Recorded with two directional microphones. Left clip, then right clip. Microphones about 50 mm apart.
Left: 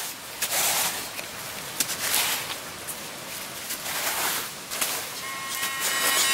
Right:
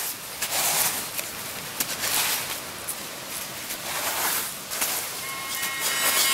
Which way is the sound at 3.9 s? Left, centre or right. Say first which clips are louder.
Even; centre.